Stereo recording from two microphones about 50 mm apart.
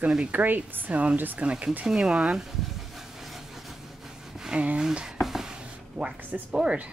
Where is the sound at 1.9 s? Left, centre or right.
Centre.